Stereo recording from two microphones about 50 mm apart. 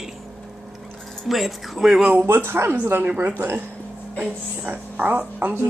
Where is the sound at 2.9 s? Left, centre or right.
Right.